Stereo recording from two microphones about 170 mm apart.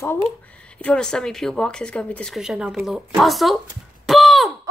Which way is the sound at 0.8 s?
5° left (ahead or behind).